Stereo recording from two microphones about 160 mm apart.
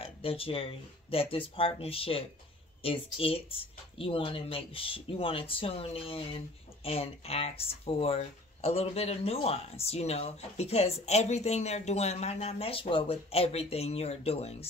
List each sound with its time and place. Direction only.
0.0 s speech: 35° left (ahead or behind)